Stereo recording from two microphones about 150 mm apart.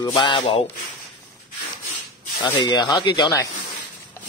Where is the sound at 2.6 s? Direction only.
30° left (ahead or behind).